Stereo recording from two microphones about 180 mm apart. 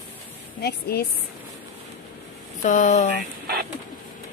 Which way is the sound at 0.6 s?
60° left (ahead or behind).